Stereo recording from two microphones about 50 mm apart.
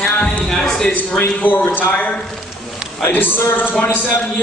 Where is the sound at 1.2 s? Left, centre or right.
Left.